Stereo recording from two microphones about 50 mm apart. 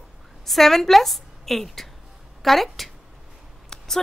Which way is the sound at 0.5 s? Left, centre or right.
Centre.